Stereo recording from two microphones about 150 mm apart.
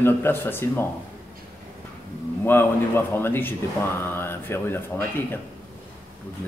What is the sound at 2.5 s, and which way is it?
Speech, 15° left (ahead or behind).